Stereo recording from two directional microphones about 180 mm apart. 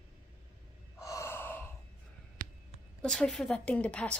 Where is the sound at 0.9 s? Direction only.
15° left (ahead or behind).